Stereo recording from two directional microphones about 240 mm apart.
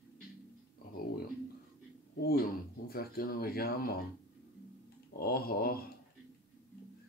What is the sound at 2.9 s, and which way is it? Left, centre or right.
Speech, left.